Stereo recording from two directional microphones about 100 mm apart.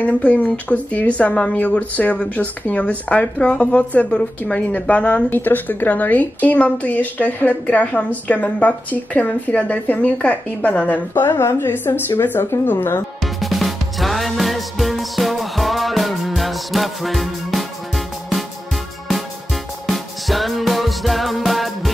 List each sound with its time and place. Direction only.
0.0 s speech: 15° left (ahead or behind)
13.2 s music: centre (ahead or behind)